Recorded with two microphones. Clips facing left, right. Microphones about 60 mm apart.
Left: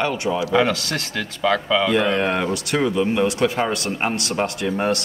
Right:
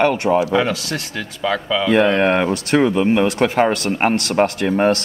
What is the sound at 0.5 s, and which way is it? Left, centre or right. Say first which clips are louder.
Speech: even; centre.